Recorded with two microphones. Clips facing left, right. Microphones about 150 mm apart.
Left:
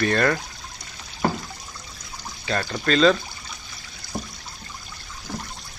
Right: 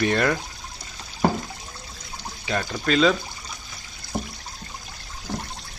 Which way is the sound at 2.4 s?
10° right (ahead or behind).